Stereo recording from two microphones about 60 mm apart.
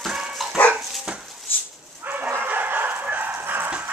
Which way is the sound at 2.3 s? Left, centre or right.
Right.